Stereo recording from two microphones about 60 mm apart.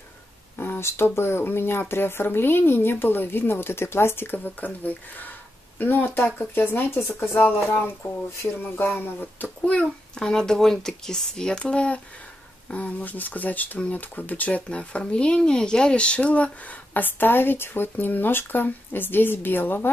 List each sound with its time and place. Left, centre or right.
0.6 s speech: left
7.3 s a child's voice: left